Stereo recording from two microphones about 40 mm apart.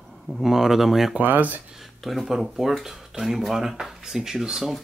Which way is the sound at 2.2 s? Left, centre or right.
Centre.